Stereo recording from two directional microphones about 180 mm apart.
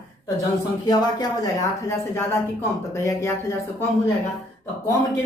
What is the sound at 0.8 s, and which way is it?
A woman's voice, 20° left (ahead or behind).